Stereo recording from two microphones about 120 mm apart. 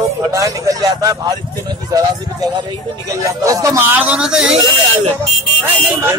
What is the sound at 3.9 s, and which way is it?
Speech, 15° right (ahead or behind).